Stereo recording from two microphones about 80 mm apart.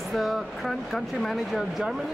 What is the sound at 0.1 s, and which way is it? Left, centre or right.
Speech, centre.